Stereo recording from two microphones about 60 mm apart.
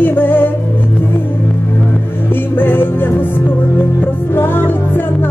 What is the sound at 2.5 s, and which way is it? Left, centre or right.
Music, left.